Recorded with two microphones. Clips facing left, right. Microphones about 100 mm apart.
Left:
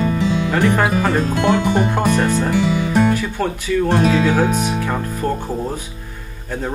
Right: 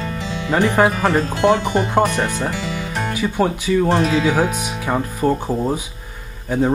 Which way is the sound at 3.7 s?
20° right (ahead or behind).